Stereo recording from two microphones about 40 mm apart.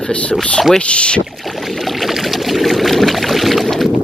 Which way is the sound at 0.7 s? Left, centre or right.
Left.